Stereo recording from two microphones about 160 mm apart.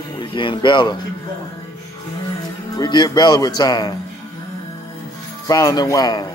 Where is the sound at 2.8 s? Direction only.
25° left (ahead or behind).